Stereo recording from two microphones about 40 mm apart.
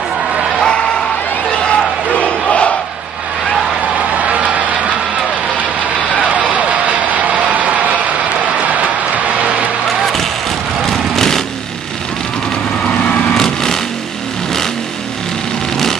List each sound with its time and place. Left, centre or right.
0.6 s a sound: left
2.0 s crowd: left
6.2 s a sound: right
9.8 s basketball bounce: centre
10.8 s vehicle: centre
12.8 s vehicle: left
13.3 s vehicle: centre